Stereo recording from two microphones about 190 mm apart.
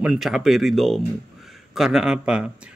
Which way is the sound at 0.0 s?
5° right (ahead or behind).